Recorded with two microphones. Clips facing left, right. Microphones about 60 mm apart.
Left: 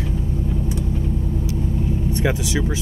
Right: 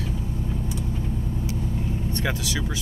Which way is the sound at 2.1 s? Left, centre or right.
Centre.